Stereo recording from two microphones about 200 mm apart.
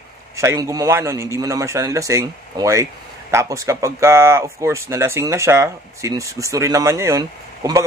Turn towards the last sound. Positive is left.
turn(degrees=-15)  # may be behind; listen again after turning